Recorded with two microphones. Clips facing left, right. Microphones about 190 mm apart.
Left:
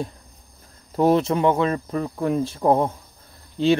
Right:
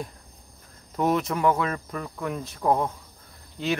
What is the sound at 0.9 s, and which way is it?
Speech, 30° left (ahead or behind).